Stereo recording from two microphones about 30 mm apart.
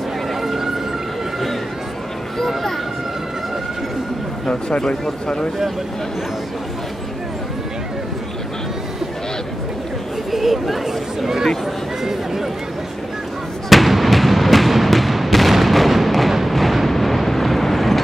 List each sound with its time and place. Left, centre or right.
0.3 s emergency vehicle: centre
2.3 s a sound: centre
4.5 s speech: left
10.3 s speech: centre
13.7 s fireworks: centre